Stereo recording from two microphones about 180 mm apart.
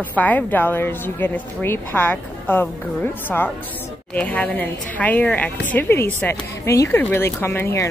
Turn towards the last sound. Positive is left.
turn(degrees=15)  # may be behind; listen again after turning